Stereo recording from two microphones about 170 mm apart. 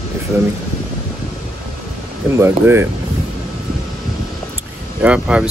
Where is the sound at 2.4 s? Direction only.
15° right (ahead or behind).